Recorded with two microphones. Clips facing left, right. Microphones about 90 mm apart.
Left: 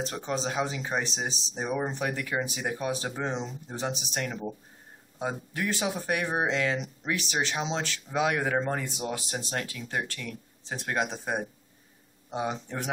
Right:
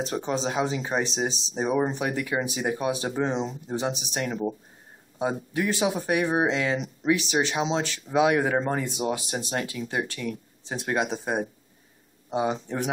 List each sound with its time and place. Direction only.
0.4 s speech: 5° right (ahead or behind)